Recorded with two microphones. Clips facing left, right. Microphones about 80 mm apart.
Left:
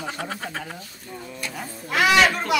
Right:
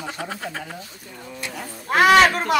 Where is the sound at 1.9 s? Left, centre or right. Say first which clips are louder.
Right 4 dB; right.